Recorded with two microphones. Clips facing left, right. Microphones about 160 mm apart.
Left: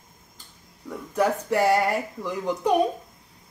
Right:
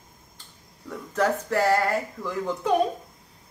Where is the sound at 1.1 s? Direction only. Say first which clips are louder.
Left 1 dB; 15° left (ahead or behind).